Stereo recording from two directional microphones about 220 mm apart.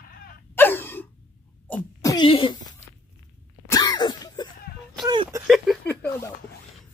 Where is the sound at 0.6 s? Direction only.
10° left (ahead or behind).